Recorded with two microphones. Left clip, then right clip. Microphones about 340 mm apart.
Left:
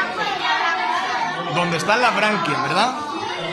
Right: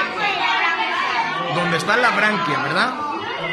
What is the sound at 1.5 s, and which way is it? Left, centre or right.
A man's voice, centre.